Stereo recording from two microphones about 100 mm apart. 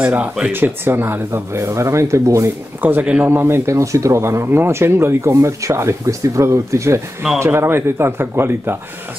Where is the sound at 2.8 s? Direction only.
15° right (ahead or behind).